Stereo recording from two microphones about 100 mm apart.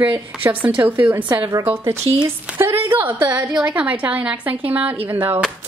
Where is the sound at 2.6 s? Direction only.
25° right (ahead or behind).